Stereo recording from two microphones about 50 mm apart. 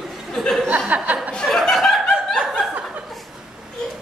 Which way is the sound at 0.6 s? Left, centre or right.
Right.